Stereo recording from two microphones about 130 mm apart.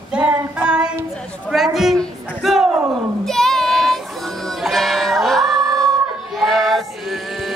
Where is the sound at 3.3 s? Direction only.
5° left (ahead or behind).